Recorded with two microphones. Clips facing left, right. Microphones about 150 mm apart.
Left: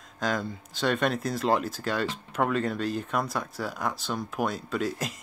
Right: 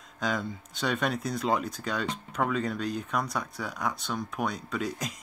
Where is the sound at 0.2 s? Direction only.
Centre (ahead or behind).